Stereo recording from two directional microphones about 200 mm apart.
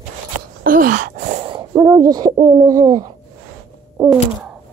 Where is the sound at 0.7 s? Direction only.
45° right (ahead or behind).